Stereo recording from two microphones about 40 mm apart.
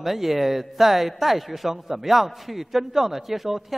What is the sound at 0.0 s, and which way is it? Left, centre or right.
A man's voice, centre.